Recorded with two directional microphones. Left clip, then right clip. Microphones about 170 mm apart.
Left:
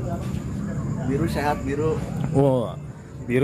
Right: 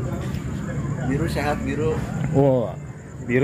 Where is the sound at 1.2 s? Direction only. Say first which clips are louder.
Even; 60° left (ahead or behind).